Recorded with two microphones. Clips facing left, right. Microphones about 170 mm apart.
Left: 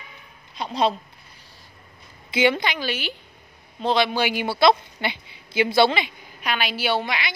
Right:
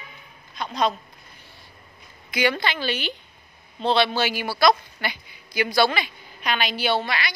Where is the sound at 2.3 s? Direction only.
20° left (ahead or behind).